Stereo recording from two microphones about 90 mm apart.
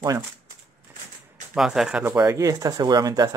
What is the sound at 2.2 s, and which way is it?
Speech, 40° right (ahead or behind).